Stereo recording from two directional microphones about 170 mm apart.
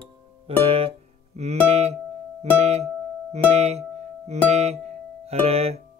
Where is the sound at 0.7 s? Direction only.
35° right (ahead or behind).